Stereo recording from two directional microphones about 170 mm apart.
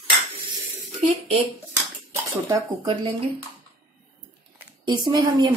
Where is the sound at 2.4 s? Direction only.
25° right (ahead or behind).